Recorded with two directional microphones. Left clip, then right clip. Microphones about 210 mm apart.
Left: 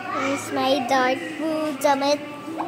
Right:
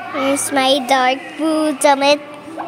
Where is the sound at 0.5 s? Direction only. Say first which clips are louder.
Right 6 dB; 30° right (ahead or behind).